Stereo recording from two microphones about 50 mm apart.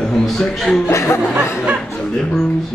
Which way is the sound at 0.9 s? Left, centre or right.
Left.